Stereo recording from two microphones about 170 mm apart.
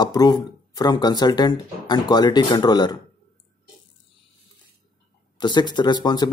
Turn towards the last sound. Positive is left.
turn(degrees=25)  # may be behind; listen again after turning